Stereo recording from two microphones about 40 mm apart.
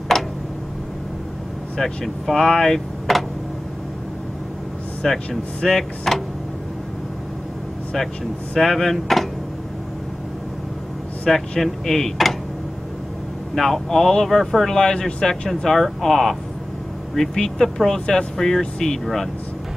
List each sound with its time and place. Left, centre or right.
0.1 s tick-tock: centre
1.8 s speech: centre
3.1 s tick: centre
5.0 s speech: centre
8.5 s speech: centre
11.2 s speech: centre
13.6 s speech: centre
14.8 s speech: left
15.6 s speech: centre